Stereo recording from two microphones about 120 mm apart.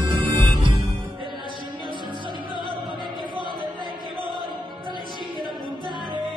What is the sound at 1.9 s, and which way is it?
Music, 40° right (ahead or behind).